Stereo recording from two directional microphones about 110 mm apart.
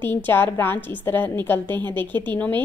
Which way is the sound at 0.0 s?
20° left (ahead or behind).